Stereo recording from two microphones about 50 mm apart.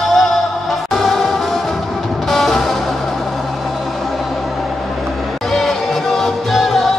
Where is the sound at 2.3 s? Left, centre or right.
Centre.